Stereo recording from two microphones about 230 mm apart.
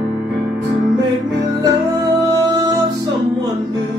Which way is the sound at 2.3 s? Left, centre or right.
Centre.